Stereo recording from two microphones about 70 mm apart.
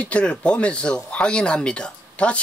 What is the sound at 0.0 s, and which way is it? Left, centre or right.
Speech, centre.